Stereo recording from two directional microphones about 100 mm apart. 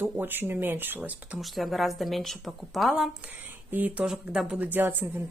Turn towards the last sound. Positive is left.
turn(degrees=-20)  # may be behind; listen again after turning